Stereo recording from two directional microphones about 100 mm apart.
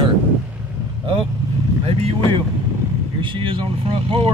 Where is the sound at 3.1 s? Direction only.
55° right (ahead or behind).